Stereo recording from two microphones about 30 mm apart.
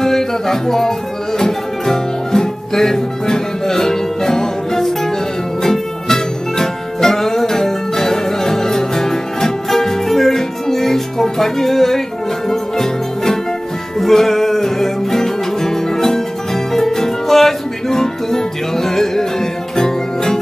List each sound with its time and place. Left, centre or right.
0.0 s music: centre